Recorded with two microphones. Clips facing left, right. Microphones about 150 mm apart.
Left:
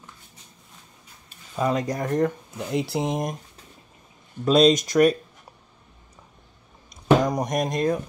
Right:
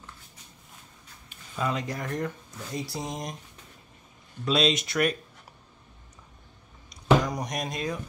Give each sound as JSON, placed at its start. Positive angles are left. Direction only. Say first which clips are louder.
{"t": 1.6, "sound": "speech", "louder": "left 6 dB", "side_deg": 40}
{"t": 2.7, "sound": "speech", "louder": "left 9 dB", "side_deg": 65}
{"t": 4.5, "sound": "speech", "louder": "left 8 dB", "side_deg": 45}
{"t": 6.9, "sound": "a sound", "louder": "left 4 dB", "side_deg": 50}